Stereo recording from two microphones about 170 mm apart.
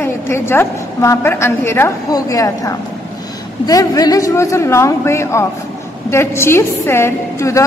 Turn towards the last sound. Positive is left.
turn(degrees=15)  # may be behind; listen again after turning